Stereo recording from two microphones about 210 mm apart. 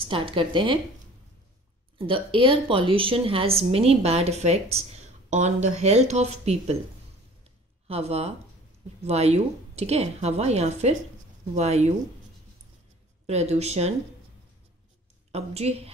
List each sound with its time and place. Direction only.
0.0 s a woman's voice: 25° right (ahead or behind)
2.0 s a woman's voice: 25° right (ahead or behind)
7.9 s a woman's voice: 30° right (ahead or behind)
13.3 s a woman's voice: 30° right (ahead or behind)
15.3 s a woman's voice: 30° right (ahead or behind)